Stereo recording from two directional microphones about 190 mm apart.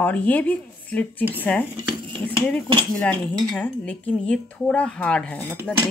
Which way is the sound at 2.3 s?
5° left (ahead or behind).